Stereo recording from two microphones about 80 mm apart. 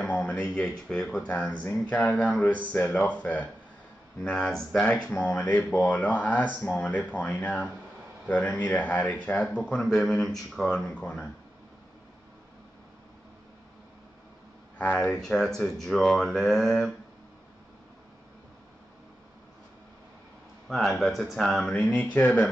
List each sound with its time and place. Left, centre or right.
0.3 s speech: centre
5.2 s speech: centre
9.8 s speech: centre
14.8 s speech: centre
20.6 s speech: centre
21.8 s speech: centre